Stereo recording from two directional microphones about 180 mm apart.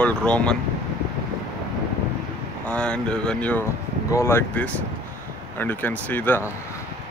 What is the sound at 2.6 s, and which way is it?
Speech, 5° left (ahead or behind).